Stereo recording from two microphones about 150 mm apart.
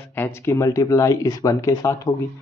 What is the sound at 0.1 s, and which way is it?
Speech, 15° left (ahead or behind).